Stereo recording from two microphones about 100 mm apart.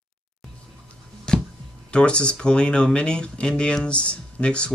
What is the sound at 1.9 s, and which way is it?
Speech, 10° left (ahead or behind).